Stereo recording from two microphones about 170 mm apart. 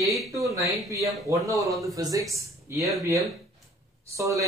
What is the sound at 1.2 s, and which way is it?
Speech, 20° right (ahead or behind).